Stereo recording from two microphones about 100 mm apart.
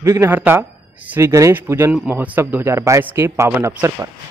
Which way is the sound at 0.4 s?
20° right (ahead or behind).